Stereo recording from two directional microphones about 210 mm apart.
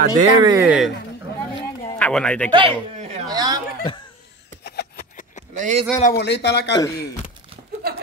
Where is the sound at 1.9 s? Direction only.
5° left (ahead or behind).